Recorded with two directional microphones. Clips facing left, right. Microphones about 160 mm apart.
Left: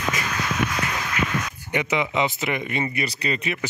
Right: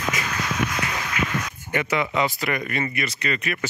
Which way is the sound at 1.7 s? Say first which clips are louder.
Even; 20° left (ahead or behind).